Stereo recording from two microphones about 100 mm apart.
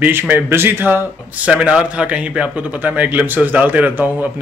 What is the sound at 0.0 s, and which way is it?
Speech, 20° right (ahead or behind).